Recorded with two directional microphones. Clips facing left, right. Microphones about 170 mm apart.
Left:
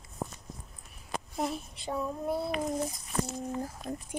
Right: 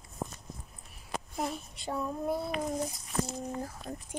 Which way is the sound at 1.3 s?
Centre (ahead or behind).